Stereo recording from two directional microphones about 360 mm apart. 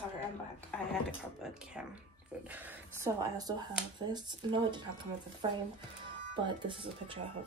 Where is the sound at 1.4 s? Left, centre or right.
Centre.